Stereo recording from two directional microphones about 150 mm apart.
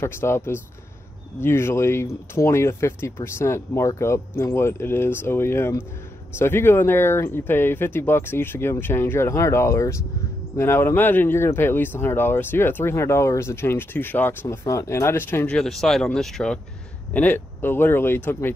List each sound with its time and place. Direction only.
0.0 s speech: 15° left (ahead or behind)